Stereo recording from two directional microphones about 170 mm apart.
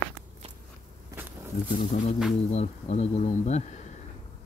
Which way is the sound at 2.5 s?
40° left (ahead or behind).